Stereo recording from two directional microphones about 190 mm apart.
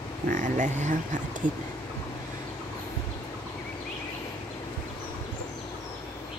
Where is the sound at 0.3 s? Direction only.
40° right (ahead or behind).